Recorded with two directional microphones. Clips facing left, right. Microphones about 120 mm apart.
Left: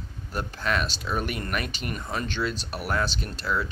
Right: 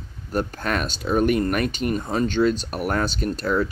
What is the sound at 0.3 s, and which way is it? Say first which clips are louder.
Speech: right 4 dB; 45° right (ahead or behind).